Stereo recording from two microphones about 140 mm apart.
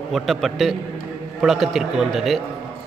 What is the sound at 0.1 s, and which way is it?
A man's voice, centre (ahead or behind).